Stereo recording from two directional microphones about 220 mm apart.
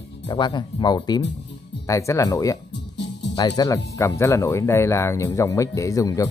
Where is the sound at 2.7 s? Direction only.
50° left (ahead or behind).